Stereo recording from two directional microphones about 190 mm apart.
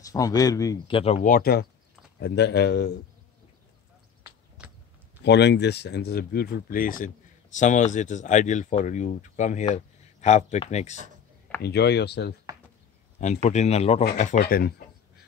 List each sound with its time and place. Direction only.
0.0 s speech: 20° left (ahead or behind)
1.2 s speech: 50° left (ahead or behind)
4.6 s chewing: 5° right (ahead or behind)
5.2 s speech: 65° left (ahead or behind); by 11.0 s 35° left (ahead or behind)
11.6 s speech: 60° left (ahead or behind)
13.2 s speech: 35° left (ahead or behind)